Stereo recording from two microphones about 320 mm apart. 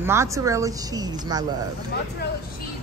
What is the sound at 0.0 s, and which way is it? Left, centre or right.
Speech, centre.